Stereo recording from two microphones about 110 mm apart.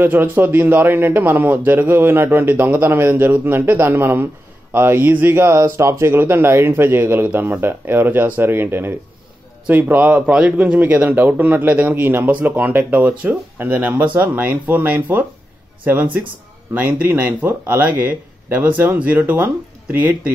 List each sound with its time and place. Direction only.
0.0 s a man's voice: 20° right (ahead or behind)